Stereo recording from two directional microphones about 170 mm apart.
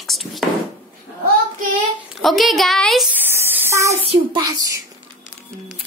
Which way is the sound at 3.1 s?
15° right (ahead or behind).